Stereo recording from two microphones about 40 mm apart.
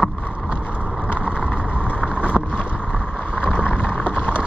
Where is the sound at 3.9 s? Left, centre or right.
Left.